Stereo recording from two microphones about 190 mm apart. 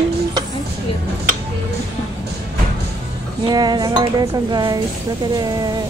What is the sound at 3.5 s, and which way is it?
Dishes, 20° right (ahead or behind).